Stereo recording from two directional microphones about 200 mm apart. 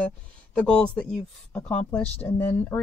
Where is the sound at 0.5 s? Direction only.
5° left (ahead or behind).